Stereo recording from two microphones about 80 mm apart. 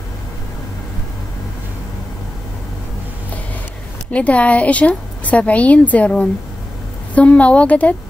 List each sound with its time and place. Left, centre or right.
4.1 s a woman's voice: centre